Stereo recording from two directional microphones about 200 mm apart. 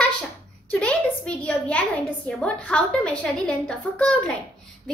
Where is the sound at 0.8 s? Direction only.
5° left (ahead or behind).